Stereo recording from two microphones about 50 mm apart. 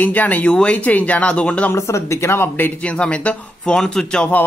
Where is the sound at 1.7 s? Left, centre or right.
Left.